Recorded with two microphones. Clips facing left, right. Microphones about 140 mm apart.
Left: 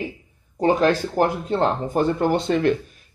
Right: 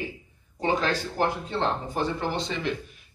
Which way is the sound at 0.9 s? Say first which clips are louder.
Left 6 dB; 45° left (ahead or behind).